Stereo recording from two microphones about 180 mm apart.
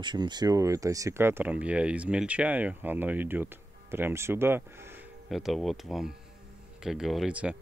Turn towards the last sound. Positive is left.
turn(degrees=-5)  # may be behind; listen again after turning